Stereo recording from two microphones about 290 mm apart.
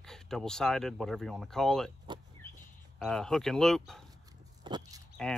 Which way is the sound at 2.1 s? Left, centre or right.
Centre.